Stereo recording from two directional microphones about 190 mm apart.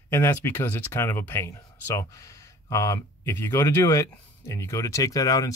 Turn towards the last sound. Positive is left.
turn(degrees=20)  # may be behind; listen again after turning